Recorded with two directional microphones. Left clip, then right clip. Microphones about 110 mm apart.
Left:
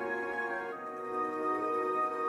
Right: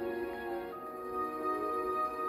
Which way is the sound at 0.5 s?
20° left (ahead or behind).